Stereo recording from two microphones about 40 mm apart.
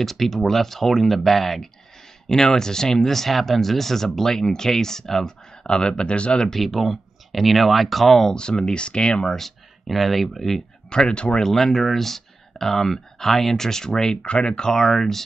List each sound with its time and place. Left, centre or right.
0.0 s speech: centre
2.2 s speech: centre
6.6 s speech: centre
8.3 s speech: centre
9.8 s speech: centre
10.9 s speech: centre
11.4 s speech: centre
14.2 s speech: left
14.7 s speech: centre